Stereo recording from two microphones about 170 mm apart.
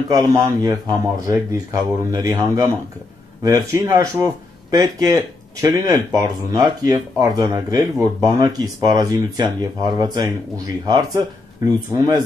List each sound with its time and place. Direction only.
0.1 s speech: 20° right (ahead or behind)
11.6 s speech: 20° right (ahead or behind)